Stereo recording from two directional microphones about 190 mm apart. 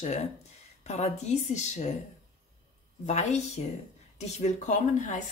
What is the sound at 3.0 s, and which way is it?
Speech, 35° left (ahead or behind).